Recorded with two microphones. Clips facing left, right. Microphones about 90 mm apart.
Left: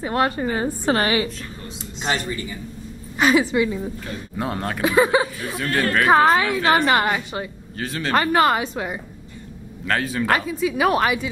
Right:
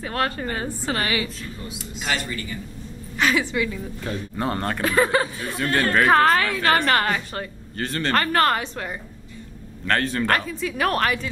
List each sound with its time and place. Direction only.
0.0 s speech: 20° left (ahead or behind)
0.8 s a woman's voice: 35° left (ahead or behind)
4.4 s speech: 5° left (ahead or behind)
7.7 s speech: centre (ahead or behind)